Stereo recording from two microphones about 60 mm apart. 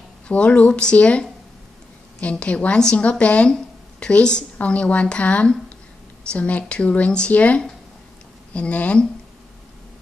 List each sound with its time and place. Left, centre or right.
0.3 s speech: left